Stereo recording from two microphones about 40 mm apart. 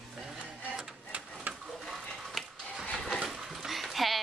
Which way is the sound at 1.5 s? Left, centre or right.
Right.